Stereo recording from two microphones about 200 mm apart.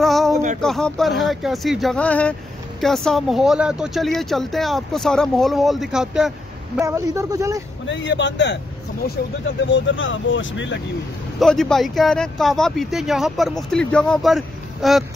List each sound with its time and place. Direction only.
0.0 s a sound: centre (ahead or behind)
0.6 s speech: 5° left (ahead or behind)
6.8 s speech: 15° right (ahead or behind)
7.8 s speech: 65° left (ahead or behind)
9.0 s speech: 50° left (ahead or behind)
9.6 s speech: 65° left (ahead or behind)
11.3 s speech: centre (ahead or behind)